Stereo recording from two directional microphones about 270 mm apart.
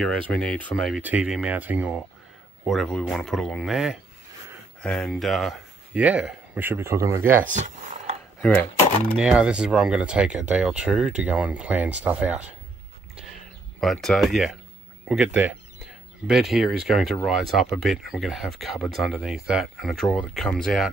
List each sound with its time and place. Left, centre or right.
0.3 s speech: centre
7.4 s speech: right
9.2 s speech: centre
13.7 s speech: centre